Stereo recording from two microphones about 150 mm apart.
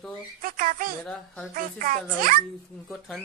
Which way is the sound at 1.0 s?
5° left (ahead or behind).